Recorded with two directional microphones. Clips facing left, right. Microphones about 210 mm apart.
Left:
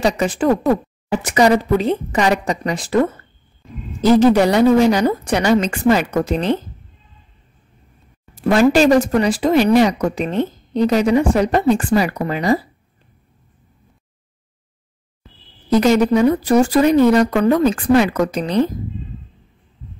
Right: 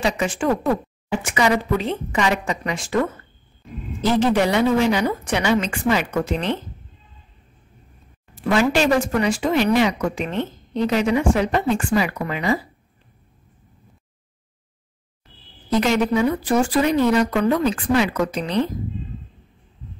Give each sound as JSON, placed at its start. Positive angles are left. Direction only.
{"t": 0.0, "sound": "speech", "side_deg": 40}
{"t": 8.4, "sound": "speech", "side_deg": 40}
{"t": 15.8, "sound": "speech", "side_deg": 40}